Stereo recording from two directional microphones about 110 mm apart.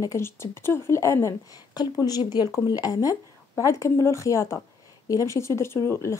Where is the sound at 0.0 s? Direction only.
25° left (ahead or behind).